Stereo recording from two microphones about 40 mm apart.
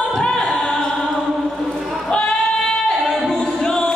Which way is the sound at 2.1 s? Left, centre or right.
Left.